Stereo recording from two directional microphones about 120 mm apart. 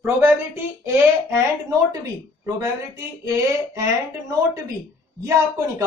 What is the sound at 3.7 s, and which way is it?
Speech, 25° right (ahead or behind).